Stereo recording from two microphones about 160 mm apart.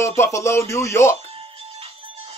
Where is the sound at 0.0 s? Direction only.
15° left (ahead or behind).